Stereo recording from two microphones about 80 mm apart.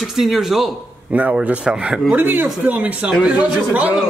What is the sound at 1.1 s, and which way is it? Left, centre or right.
A man's voice, centre.